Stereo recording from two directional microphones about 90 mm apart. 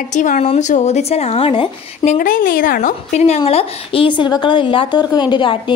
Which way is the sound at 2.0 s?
50° left (ahead or behind).